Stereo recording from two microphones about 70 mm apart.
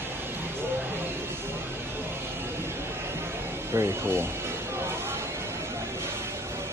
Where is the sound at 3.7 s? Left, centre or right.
Right.